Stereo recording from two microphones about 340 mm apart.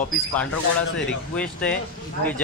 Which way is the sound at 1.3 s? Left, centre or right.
Centre.